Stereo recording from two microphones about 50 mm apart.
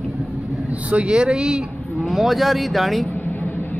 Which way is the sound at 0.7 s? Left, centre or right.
Right.